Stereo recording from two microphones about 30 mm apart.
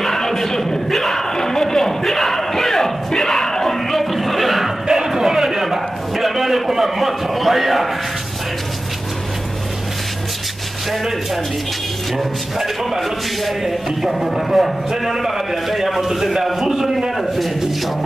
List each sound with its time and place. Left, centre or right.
0.0 s music: centre
0.3 s a sound: centre
1.3 s crowd: centre
3.9 s music: centre
4.8 s a sound: centre
13.5 s a man's voice: centre